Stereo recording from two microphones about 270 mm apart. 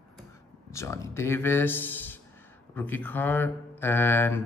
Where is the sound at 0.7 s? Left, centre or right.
Centre.